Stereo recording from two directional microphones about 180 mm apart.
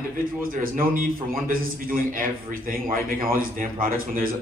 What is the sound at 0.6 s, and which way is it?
A man's voice, 50° right (ahead or behind).